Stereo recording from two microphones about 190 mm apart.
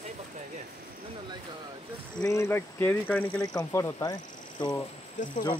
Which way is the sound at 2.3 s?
15° left (ahead or behind).